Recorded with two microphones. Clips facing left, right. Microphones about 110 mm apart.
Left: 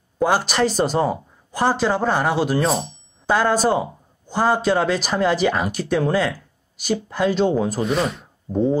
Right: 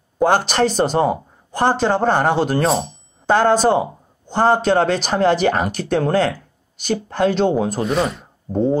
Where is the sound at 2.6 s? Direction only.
Centre (ahead or behind).